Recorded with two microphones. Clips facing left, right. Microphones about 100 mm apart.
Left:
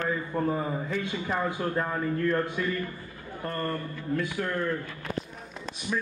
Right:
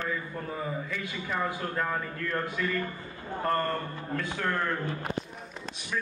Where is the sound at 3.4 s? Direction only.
45° right (ahead or behind).